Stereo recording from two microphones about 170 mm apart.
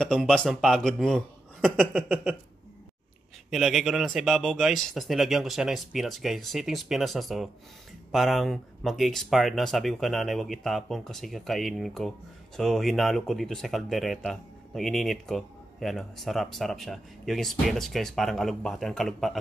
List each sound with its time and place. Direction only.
0.0 s speech: 5° left (ahead or behind)
3.4 s speech: centre (ahead or behind)